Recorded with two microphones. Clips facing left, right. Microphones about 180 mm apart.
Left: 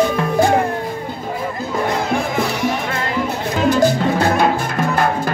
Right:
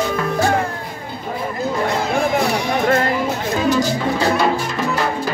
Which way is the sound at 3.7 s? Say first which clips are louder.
Left 4 dB; 55° left (ahead or behind).